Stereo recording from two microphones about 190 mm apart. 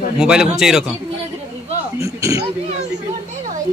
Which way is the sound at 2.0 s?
15° right (ahead or behind).